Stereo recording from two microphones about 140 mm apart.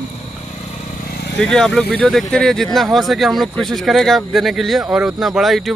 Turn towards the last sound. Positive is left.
turn(degrees=0)  # may be behind; listen again after turning